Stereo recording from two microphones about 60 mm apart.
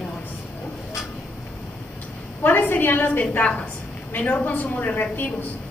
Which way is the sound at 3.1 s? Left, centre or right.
Left.